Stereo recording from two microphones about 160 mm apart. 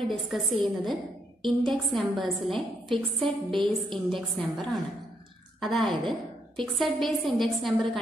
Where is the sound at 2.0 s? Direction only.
Centre (ahead or behind).